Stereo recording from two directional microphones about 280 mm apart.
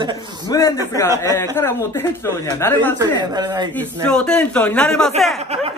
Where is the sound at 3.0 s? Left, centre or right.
Centre.